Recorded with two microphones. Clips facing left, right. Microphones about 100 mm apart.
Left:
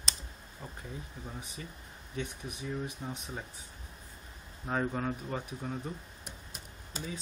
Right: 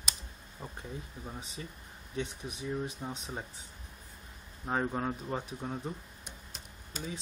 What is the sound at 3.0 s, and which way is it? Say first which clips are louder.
Speech: right 1 dB; 15° right (ahead or behind).